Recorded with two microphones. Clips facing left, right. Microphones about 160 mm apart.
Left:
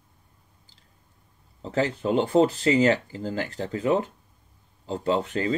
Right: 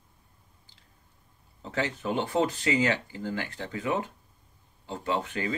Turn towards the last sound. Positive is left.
turn(degrees=35)  # may be behind; listen again after turning